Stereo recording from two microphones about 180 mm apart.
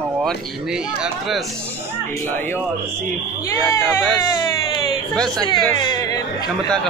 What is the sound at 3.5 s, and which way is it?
Speech, 15° left (ahead or behind).